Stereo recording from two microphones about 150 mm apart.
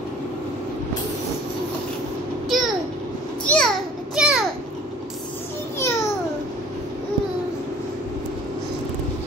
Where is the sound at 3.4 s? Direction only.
5° left (ahead or behind).